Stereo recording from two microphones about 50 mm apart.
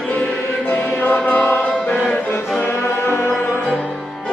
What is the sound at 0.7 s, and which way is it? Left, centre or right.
Music, left.